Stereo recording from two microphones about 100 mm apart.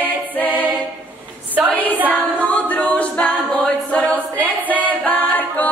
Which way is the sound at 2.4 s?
15° left (ahead or behind).